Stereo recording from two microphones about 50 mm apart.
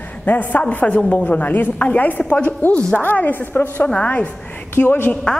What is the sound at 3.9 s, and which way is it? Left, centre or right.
Speech, left.